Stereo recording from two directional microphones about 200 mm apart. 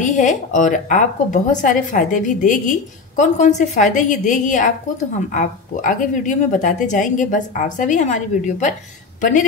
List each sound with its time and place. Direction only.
0.0 s a woman's voice: 35° left (ahead or behind)